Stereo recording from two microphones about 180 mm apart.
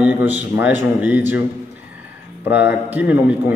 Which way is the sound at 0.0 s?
10° right (ahead or behind).